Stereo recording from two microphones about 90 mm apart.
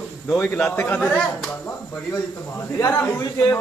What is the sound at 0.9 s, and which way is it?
Speech, 15° left (ahead or behind).